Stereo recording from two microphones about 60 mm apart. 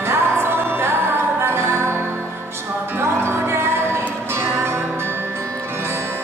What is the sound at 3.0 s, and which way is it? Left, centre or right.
Music, right.